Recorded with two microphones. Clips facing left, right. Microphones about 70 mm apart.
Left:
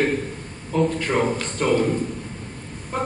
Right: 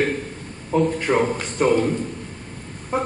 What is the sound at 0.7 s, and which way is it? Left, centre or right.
A woman's voice, centre.